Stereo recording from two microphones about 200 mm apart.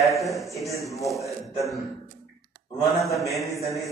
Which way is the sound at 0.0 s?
Centre (ahead or behind).